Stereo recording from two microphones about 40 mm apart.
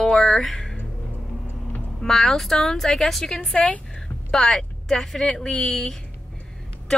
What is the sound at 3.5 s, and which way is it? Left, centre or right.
Speech, left.